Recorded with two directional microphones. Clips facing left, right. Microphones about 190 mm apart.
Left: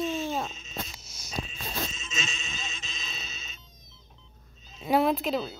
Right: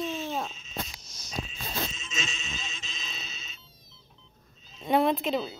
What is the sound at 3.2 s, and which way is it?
Cat, 45° left (ahead or behind).